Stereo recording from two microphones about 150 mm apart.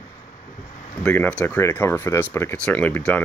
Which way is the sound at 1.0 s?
10° left (ahead or behind).